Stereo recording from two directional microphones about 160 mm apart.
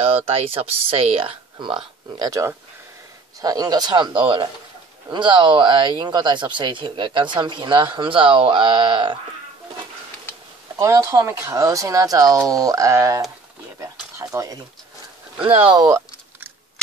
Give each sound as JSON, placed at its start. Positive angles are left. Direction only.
{"t": 0.0, "sound": "speech", "side_deg": -40}
{"t": 10.8, "sound": "speech", "side_deg": -20}
{"t": 15.4, "sound": "speech", "side_deg": -35}